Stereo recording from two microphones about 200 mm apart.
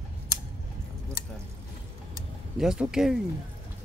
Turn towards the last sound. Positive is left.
turn(degrees=-5)  # may be behind; listen again after turning